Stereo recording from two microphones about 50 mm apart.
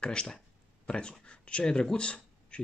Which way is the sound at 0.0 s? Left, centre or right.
Centre.